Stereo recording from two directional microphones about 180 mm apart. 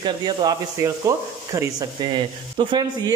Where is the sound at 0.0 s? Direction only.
25° right (ahead or behind).